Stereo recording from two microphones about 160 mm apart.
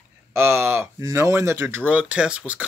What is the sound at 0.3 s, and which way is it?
Speech, 15° right (ahead or behind).